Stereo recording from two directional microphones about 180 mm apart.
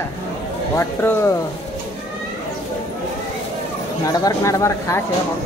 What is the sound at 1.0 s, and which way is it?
Speech, 15° left (ahead or behind).